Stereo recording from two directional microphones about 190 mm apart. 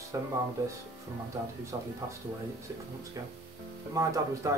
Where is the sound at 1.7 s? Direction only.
15° right (ahead or behind).